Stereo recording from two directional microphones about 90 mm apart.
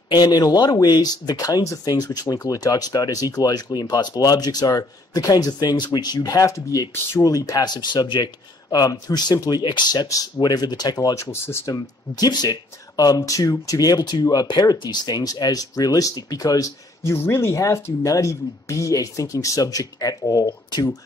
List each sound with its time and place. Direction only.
0.1 s speech: 50° left (ahead or behind)